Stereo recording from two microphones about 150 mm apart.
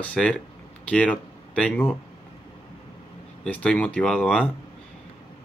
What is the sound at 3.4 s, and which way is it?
Speech, 5° left (ahead or behind).